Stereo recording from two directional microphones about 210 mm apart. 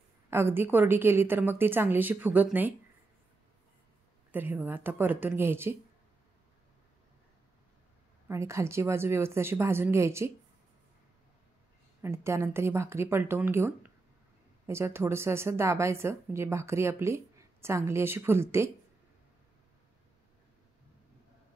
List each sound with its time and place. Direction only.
0.3 s a woman's voice: 10° right (ahead or behind)
4.3 s a woman's voice: 10° right (ahead or behind)
8.3 s a woman's voice: 15° right (ahead or behind)
12.0 s a woman's voice: 10° right (ahead or behind)